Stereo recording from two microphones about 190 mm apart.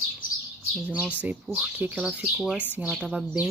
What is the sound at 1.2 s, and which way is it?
Speech, 10° right (ahead or behind).